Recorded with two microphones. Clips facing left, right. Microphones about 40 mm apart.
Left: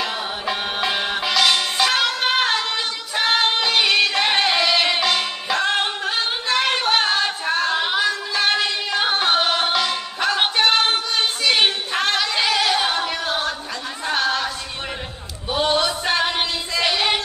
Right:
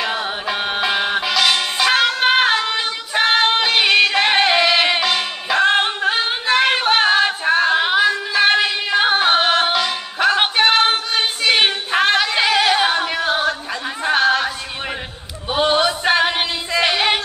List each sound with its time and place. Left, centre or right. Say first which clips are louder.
0.0 s music: right 3 dB; centre
5.0 s music: right 1 dB; centre
5.6 s singing: right 7 dB; centre
9.7 s music: right 2 dB; centre
10.2 s female singing: right 4 dB; centre
14.0 s a sound: right 5 dB; centre
15.5 s a sound: right 3 dB; centre